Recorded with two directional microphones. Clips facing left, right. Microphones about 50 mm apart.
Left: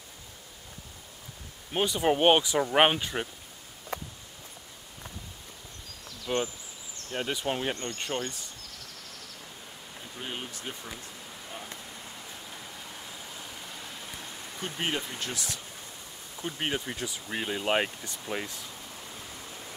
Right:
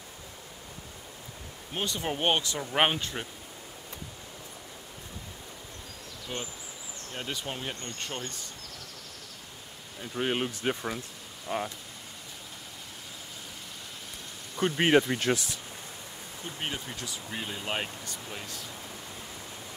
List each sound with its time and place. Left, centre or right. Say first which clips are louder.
1.7 s speech: left 7 dB; centre
6.3 s speech: left 8 dB; centre
10.1 s speech: right 9 dB; right
14.6 s speech: right 10 dB; right
16.4 s speech: left 4 dB; left